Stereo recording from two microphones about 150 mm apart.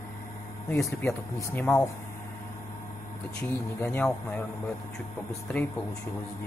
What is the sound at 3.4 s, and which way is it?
Speech, 10° left (ahead or behind).